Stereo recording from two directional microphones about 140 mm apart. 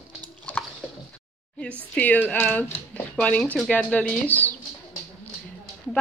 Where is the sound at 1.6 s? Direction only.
10° left (ahead or behind).